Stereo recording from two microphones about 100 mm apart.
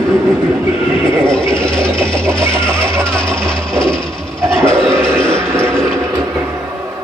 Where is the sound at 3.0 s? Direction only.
10° left (ahead or behind).